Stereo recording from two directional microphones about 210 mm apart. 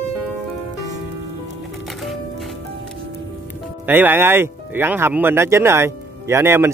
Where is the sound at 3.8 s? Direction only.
10° right (ahead or behind).